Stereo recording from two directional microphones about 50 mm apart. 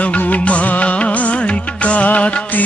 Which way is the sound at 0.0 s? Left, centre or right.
Left.